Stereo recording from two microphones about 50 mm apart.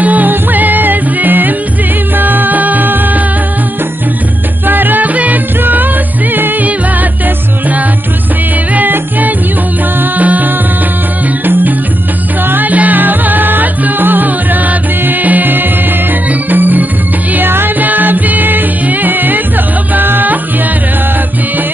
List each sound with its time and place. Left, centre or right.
0.0 s music: right
4.6 s music: right
8.7 s music: right
12.4 s music: right